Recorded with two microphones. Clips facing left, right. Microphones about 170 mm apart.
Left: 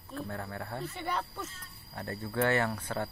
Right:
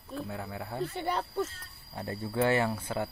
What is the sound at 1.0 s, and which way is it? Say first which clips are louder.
Speech: right 5 dB; 30° right (ahead or behind).